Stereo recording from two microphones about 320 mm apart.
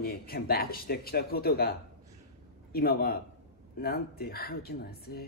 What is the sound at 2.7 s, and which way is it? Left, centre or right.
Speech, left.